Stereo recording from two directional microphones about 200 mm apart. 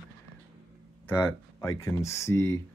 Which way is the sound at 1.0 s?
15° left (ahead or behind).